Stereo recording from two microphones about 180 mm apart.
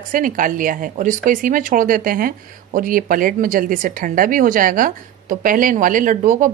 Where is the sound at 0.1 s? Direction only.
50° right (ahead or behind).